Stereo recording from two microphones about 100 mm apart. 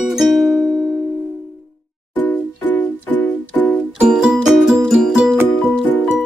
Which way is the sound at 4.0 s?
10° right (ahead or behind).